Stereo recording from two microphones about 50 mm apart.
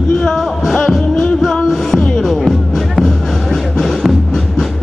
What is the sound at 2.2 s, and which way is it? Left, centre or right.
Music, centre.